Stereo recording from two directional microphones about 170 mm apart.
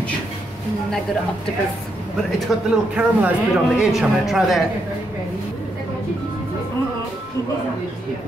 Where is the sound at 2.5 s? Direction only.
5° right (ahead or behind).